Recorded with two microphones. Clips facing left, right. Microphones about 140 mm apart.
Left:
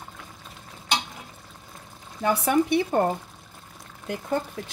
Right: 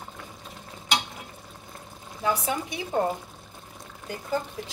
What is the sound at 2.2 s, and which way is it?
Speech, 65° left (ahead or behind).